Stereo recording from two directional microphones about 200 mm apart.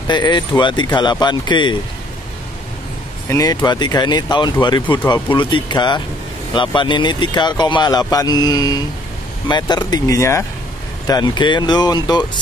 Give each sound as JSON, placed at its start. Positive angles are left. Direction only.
{"t": 0.1, "sound": "speech", "side_deg": 20}
{"t": 3.3, "sound": "speech", "side_deg": 15}